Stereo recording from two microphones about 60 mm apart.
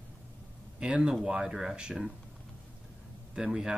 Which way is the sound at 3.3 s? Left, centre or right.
Centre.